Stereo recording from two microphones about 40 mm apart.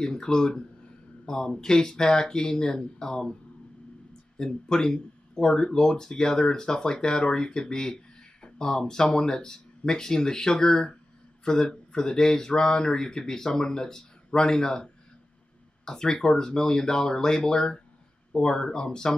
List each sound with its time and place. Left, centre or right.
0.0 s speech: centre
4.4 s speech: centre